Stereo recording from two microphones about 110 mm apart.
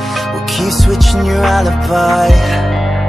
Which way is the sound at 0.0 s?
Centre (ahead or behind).